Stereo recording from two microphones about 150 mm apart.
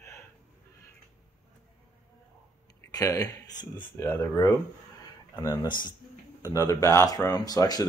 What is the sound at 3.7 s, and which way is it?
Speech, 15° left (ahead or behind).